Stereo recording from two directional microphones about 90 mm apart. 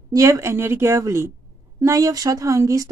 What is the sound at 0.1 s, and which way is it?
Speech, 35° right (ahead or behind).